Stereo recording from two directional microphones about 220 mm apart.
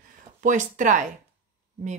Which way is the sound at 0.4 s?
35° right (ahead or behind).